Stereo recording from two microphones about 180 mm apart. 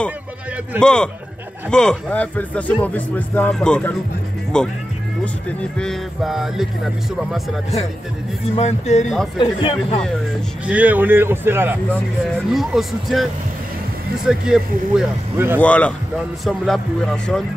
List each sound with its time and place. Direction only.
0.7 s speech: 5° left (ahead or behind)
5.8 s speech: centre (ahead or behind)
8.5 s speech: 40° left (ahead or behind)
9.4 s speech: 25° left (ahead or behind)
10.7 s a man's voice: 10° right (ahead or behind)
12.4 s speech: centre (ahead or behind)
15.6 s speech: 5° left (ahead or behind)